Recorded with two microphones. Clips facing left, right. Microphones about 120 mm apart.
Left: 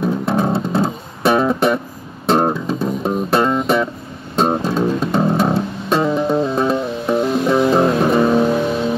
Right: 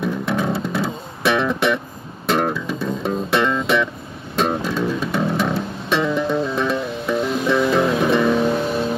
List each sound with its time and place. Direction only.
0.0 s music: 35° left (ahead or behind)
3.6 s guitar: 40° left (ahead or behind)
4.4 s music: 35° left (ahead or behind)
8.5 s vehicle: 10° left (ahead or behind)